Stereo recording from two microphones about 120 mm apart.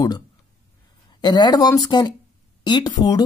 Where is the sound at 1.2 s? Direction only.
35° left (ahead or behind).